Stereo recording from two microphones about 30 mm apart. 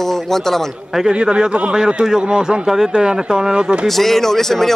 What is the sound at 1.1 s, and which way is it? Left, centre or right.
A man's voice, right.